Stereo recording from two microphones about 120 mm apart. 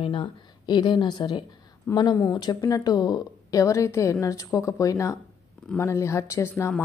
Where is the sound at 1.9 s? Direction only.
20° left (ahead or behind).